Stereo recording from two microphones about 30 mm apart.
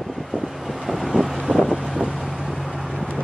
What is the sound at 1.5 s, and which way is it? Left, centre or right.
Vehicle, left.